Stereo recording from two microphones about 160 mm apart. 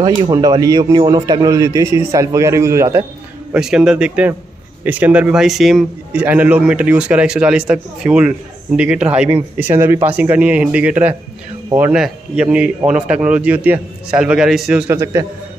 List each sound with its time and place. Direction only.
0.0 s speech: 25° right (ahead or behind)
3.5 s a man's voice: 5° right (ahead or behind)